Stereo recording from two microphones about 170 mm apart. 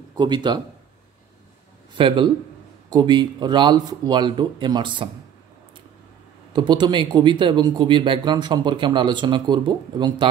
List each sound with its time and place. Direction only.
0.1 s a man's voice: 25° right (ahead or behind)
2.0 s speech: 30° right (ahead or behind)
6.5 s speech: 25° right (ahead or behind)